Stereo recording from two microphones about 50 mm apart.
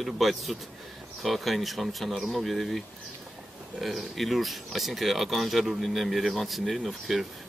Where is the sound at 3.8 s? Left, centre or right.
Centre.